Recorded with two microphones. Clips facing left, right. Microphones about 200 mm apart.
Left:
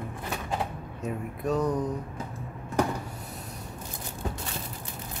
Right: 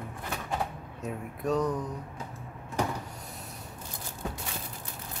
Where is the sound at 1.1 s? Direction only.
Centre (ahead or behind).